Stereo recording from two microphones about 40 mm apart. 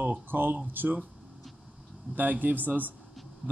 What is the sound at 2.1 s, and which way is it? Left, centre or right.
Speech, right.